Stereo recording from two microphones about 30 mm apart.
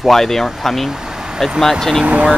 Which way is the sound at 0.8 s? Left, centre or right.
Centre.